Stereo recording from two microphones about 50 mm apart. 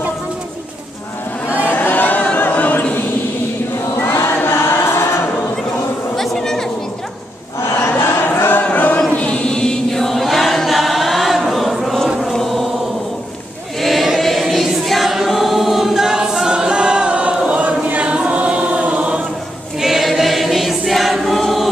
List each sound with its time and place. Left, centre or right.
1.6 s choir: left
4.3 s choir: left
6.1 s a sound: centre
7.9 s crowd: left
8.7 s choir: left
9.1 s chant: left; by 12.6 s centre
13.7 s choir: centre; by 19.2 s right
19.8 s choir: centre